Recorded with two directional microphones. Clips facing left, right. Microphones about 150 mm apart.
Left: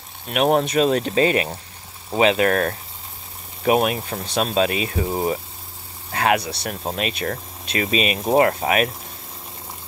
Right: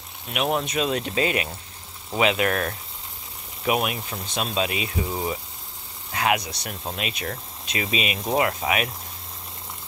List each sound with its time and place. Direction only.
0.3 s speech: 45° left (ahead or behind)
4.1 s speech: 50° left (ahead or behind)